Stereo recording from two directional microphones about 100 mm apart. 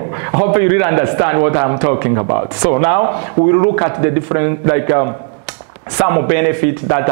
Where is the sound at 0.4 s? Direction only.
20° right (ahead or behind).